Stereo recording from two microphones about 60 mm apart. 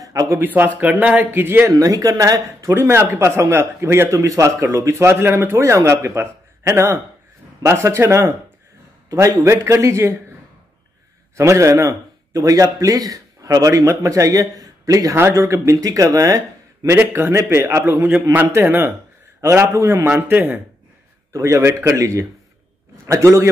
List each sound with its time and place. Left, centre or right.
0.0 s a sound: right
0.4 s a man's voice: right
1.7 s speech: right
2.7 s a man's voice: right
3.2 s speech: right
5.6 s speech: right
9.4 s speech: right
11.3 s a man's voice: right
14.6 s a sound: right
15.3 s a man's voice: right
15.8 s speech: right
16.9 s a man's voice: right
21.3 s a man's voice: right
21.9 s a man's voice: right